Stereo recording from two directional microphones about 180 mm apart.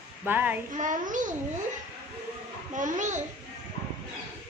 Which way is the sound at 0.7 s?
45° right (ahead or behind).